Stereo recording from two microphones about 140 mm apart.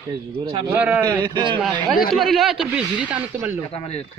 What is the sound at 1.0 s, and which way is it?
Speech, 35° right (ahead or behind).